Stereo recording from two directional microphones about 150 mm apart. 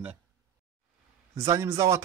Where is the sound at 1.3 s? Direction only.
20° right (ahead or behind).